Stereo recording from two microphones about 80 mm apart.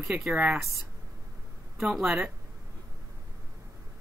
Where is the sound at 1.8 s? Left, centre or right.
Centre.